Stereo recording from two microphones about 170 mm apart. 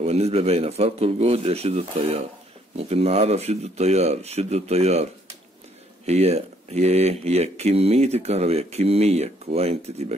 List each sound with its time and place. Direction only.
0.0 s speech: 35° right (ahead or behind)
6.0 s speech: 40° right (ahead or behind)